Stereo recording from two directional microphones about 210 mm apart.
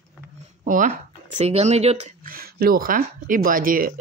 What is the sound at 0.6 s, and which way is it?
Speech, 40° right (ahead or behind).